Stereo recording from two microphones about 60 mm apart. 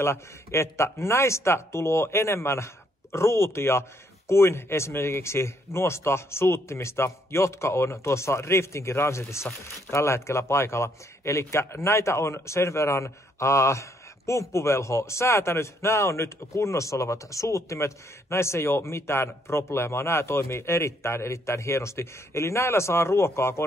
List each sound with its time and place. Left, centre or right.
0.0 s speech: left